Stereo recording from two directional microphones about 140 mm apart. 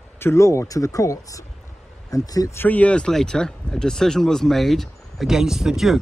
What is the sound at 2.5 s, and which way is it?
Speech, 10° left (ahead or behind).